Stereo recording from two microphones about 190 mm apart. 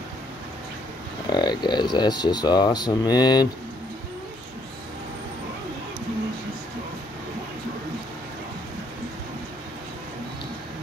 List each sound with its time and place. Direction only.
1.3 s speech: 20° left (ahead or behind)